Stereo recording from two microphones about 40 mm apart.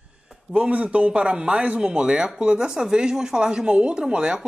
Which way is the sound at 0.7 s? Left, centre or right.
Right.